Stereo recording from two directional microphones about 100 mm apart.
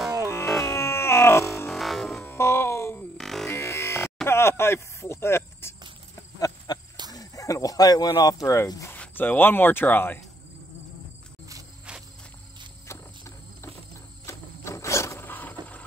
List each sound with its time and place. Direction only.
0.2 s synthesizer: 25° left (ahead or behind)
0.7 s music: 25° left (ahead or behind)
1.7 s music: centre (ahead or behind)
2.2 s music: 25° left (ahead or behind)
3.2 s music: 5° left (ahead or behind)
3.4 s music: 25° left (ahead or behind)
4.3 s a sound: 25° left (ahead or behind)
6.7 s cricket: 40° left (ahead or behind)
7.1 s a sound: 35° left (ahead or behind)
8.9 s speech: 15° left (ahead or behind)
12.8 s insect: 25° left (ahead or behind)
14.2 s wild animals: 30° left (ahead or behind)